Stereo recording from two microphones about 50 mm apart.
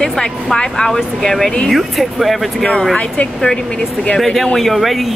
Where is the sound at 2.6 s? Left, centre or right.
Centre.